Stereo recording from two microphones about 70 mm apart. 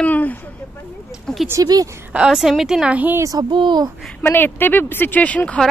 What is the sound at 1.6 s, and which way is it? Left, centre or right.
Speech, right.